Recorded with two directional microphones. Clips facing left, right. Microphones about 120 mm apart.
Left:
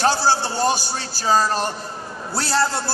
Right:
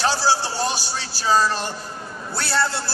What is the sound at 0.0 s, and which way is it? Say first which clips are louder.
A man's voice: left 2 dB; 50° left (ahead or behind).